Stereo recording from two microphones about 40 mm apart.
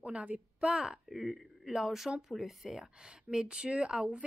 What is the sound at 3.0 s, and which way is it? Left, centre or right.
Speech, right.